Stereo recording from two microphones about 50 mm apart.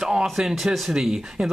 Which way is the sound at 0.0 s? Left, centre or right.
Centre.